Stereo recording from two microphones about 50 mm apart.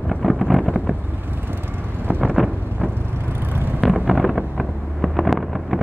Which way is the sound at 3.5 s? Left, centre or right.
Right.